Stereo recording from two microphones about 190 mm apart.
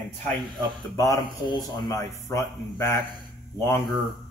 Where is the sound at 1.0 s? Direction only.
20° left (ahead or behind).